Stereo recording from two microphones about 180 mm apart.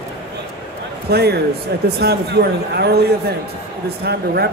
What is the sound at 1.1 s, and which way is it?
A man's voice, 65° right (ahead or behind).